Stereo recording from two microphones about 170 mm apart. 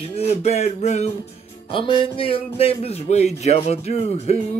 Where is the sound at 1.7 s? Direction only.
30° left (ahead or behind).